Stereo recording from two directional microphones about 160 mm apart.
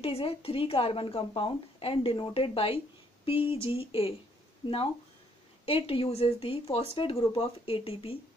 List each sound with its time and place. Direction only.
0.0 s a woman's voice: 35° left (ahead or behind)